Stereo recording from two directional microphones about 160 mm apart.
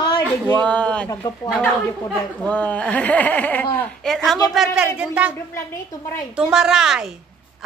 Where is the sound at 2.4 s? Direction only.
10° left (ahead or behind); by 5.3 s 10° right (ahead or behind).